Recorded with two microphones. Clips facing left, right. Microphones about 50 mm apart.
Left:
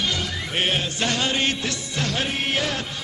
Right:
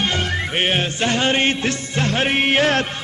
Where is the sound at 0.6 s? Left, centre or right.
Right.